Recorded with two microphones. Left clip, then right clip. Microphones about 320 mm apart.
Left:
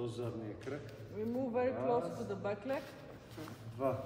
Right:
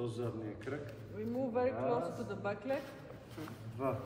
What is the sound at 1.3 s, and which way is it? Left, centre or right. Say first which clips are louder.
Speech: right 1 dB; left.